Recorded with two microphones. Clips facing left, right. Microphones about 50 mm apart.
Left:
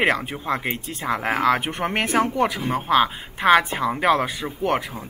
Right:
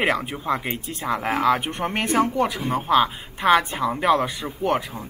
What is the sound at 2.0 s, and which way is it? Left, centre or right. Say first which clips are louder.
Speech: right 1 dB; left.